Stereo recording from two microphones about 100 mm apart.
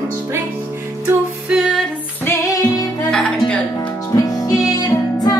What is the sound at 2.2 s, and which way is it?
Music, 25° left (ahead or behind).